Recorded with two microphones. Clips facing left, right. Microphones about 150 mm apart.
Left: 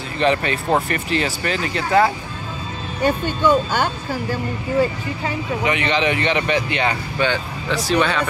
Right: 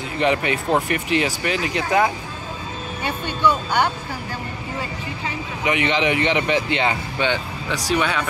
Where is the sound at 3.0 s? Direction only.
45° left (ahead or behind).